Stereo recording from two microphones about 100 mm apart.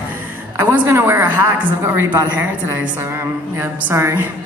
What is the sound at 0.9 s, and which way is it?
A woman's voice, 25° right (ahead or behind).